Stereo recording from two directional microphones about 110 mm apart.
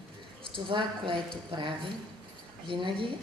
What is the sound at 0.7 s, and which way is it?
A woman's voice, 50° right (ahead or behind).